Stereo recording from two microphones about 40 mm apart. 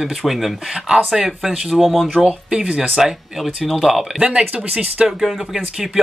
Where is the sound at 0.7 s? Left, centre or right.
Centre.